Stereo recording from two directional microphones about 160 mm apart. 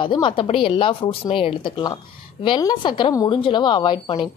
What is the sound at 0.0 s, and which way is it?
A woman's voice, 30° left (ahead or behind).